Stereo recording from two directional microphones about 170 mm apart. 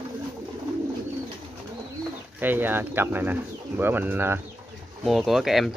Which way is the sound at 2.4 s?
10° right (ahead or behind).